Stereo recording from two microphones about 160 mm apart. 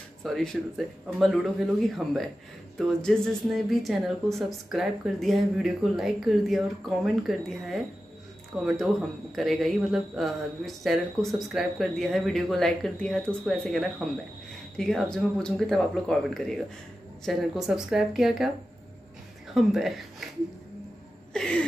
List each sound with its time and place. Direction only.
0.2 s a woman's voice: 5° left (ahead or behind)
19.5 s speech: centre (ahead or behind)
21.3 s a sound: 5° left (ahead or behind)